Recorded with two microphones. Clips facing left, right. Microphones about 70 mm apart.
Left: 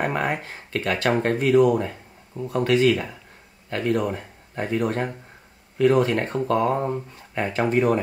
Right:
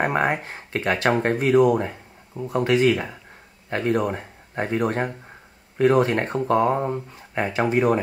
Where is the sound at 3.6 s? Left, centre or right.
Right.